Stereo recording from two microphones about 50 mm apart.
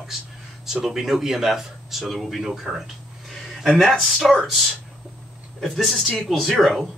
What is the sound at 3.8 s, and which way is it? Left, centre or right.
Speech, centre.